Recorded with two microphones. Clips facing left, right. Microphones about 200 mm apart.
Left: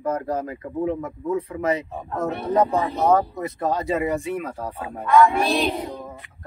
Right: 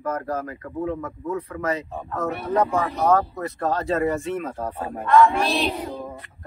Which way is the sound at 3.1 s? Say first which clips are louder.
Left 1 dB; 15° left (ahead or behind).